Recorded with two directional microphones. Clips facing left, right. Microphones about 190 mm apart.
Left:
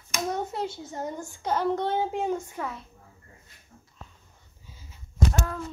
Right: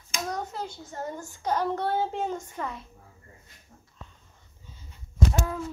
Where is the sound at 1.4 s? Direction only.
10° right (ahead or behind).